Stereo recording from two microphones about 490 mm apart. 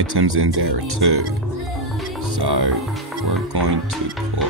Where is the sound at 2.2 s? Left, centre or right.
Right.